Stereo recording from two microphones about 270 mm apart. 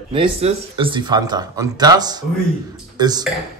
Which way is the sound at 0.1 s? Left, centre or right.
Right.